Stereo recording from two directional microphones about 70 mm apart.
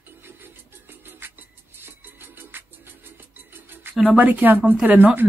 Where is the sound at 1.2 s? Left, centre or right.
Right.